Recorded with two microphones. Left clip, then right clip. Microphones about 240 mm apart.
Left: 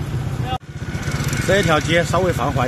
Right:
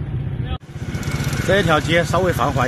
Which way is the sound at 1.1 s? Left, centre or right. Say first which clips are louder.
Left 1 dB; left.